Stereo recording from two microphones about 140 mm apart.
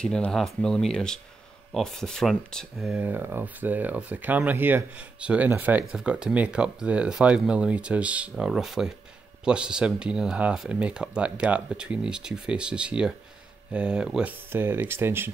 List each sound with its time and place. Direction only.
0.0 s speech: 5° left (ahead or behind); by 15.3 s 15° right (ahead or behind)